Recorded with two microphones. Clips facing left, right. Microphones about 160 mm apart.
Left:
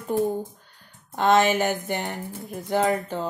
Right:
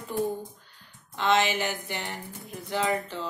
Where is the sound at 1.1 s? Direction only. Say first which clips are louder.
Left 5 dB; 45° left (ahead or behind).